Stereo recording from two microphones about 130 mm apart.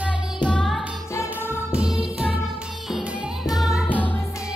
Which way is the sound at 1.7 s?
5° right (ahead or behind).